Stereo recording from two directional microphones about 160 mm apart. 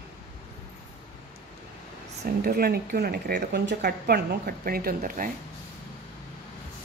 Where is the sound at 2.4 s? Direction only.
70° right (ahead or behind).